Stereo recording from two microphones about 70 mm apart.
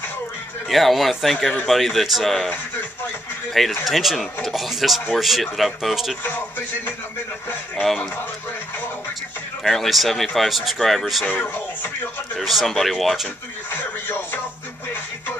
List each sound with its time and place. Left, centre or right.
0.7 s speech: centre
3.8 s speech: centre
7.8 s speech: centre
9.6 s speech: centre
11.2 s speech: left
12.4 s speech: centre
13.7 s music: left